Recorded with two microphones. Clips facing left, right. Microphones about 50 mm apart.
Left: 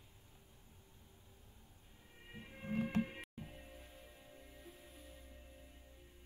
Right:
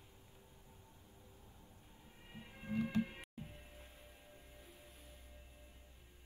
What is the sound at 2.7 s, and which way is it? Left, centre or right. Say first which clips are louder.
Music: even; left.